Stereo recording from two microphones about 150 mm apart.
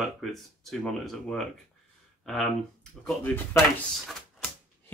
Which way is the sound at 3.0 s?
10° left (ahead or behind).